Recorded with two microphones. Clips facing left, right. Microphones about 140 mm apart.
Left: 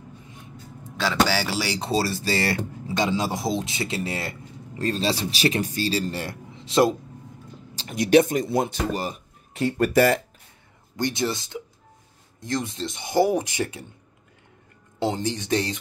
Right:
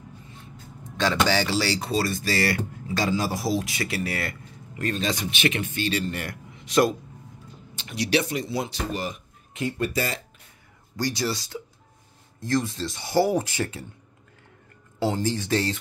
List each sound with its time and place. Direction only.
0.9 s speech: 10° left (ahead or behind)
1.8 s speech: 30° left (ahead or behind)
7.7 s speech: 40° left (ahead or behind)
9.9 s speech: 60° left (ahead or behind)
11.0 s speech: 25° left (ahead or behind)
15.0 s speech: 20° left (ahead or behind)